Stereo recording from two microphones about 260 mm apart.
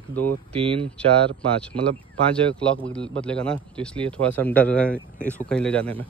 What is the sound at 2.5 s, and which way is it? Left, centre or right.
Speech, centre.